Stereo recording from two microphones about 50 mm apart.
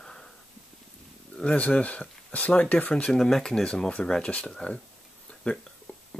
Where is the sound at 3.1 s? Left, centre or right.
Centre.